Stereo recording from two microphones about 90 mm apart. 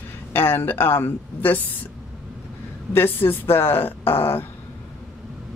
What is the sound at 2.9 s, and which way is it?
Speech, 25° left (ahead or behind).